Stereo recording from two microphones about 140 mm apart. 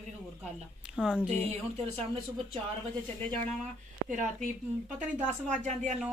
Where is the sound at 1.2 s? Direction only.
50° right (ahead or behind).